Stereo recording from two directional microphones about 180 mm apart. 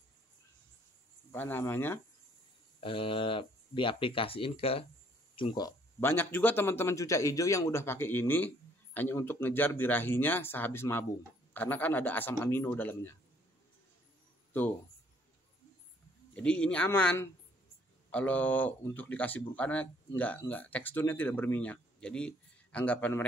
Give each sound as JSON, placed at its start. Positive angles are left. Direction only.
{"t": 1.3, "sound": "speech", "side_deg": 10}
{"t": 2.8, "sound": "speech", "side_deg": 30}
{"t": 16.3, "sound": "speech", "side_deg": 5}